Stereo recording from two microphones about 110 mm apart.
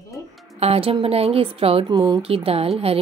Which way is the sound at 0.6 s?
60° right (ahead or behind).